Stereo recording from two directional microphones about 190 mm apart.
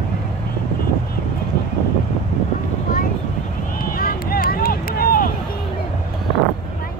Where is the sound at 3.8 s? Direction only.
50° left (ahead or behind).